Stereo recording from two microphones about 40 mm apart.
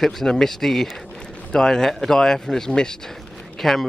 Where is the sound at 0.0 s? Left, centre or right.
Centre.